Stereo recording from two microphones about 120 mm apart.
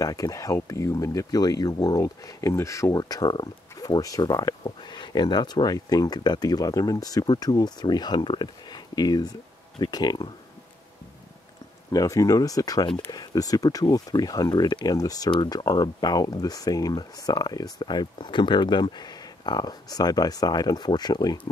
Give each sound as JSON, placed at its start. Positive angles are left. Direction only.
{"t": 0.0, "sound": "speech", "side_deg": 30}
{"t": 11.9, "sound": "speech", "side_deg": 30}